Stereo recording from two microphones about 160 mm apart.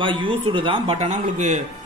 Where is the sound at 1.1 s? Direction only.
50° right (ahead or behind).